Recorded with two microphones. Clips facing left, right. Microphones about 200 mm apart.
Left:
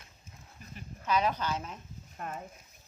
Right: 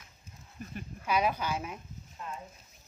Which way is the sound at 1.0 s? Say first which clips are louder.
Even; 10° right (ahead or behind).